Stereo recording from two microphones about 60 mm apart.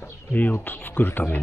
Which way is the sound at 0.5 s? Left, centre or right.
Left.